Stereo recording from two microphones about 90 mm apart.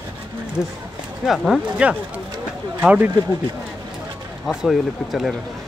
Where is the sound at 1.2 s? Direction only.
Centre (ahead or behind).